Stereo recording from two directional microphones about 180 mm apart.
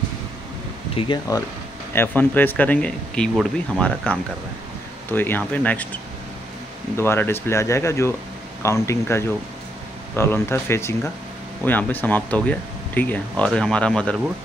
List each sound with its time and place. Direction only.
0.9 s speech: 25° left (ahead or behind)
2.0 s speech: 10° left (ahead or behind)
7.0 s speech: 15° left (ahead or behind)